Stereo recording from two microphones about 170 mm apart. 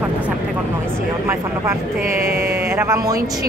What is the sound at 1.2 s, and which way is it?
A woman's voice, 15° right (ahead or behind).